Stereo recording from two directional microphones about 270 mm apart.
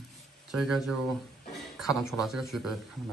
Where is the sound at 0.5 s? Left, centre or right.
Centre.